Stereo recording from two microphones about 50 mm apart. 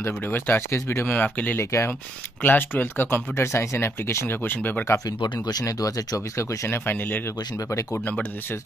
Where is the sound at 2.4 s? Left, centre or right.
Left.